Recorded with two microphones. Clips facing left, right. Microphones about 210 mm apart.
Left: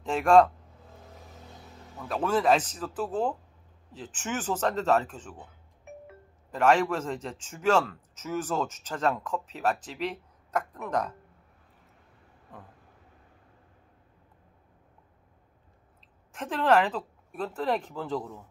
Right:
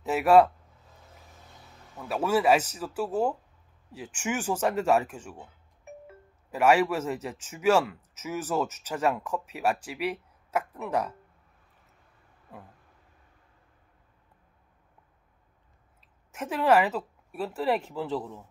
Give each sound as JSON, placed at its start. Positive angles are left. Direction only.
{"t": 0.0, "sound": "a man's voice", "side_deg": -5}
{"t": 2.0, "sound": "speech", "side_deg": -10}
{"t": 16.3, "sound": "speech", "side_deg": -10}